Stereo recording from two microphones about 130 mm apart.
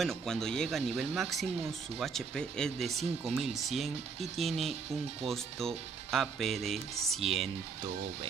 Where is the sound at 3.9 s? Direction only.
55° right (ahead or behind).